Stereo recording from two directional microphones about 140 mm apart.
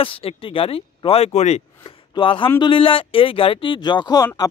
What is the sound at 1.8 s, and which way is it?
Speech, 40° left (ahead or behind).